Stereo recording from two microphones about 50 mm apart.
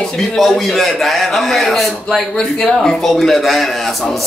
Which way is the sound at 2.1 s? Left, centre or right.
Centre.